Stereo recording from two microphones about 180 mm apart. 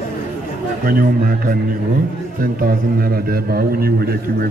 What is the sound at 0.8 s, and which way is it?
Speech, 50° right (ahead or behind).